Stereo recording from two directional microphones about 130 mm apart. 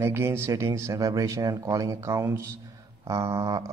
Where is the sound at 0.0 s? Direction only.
20° right (ahead or behind).